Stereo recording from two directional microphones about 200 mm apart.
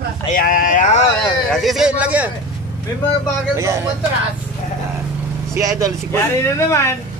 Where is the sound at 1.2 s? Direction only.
Centre (ahead or behind).